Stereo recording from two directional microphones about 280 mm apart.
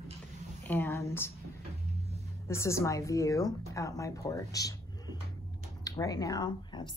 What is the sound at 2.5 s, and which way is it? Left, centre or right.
A woman's voice, centre.